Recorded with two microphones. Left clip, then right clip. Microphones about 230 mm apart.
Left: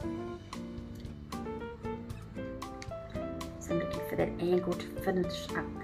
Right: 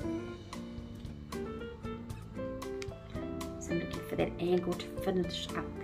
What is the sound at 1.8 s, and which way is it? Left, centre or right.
Music, centre.